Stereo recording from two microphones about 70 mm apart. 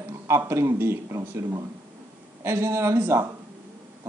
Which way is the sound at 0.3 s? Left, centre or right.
Right.